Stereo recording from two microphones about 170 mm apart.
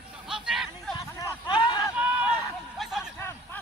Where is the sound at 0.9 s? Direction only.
20° left (ahead or behind).